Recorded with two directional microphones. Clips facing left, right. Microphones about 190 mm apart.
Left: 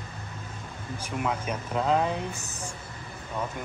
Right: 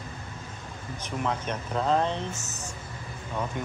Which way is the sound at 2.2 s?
35° left (ahead or behind).